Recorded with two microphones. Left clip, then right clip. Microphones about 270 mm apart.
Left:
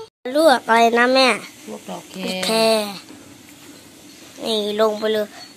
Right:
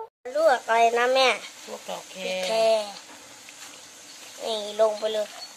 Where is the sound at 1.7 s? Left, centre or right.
Right.